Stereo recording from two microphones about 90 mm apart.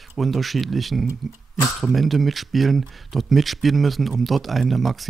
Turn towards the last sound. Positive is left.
turn(degrees=0)  # may be behind; listen again after turning